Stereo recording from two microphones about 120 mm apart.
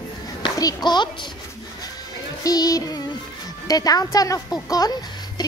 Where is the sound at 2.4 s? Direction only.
30° left (ahead or behind).